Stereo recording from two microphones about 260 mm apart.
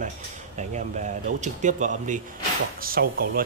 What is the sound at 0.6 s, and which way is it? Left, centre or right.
Speech, right.